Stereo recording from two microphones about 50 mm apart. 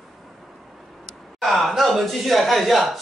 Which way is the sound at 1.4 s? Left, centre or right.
Centre.